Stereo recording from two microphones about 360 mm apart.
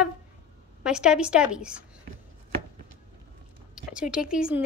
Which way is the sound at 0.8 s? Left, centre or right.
Centre.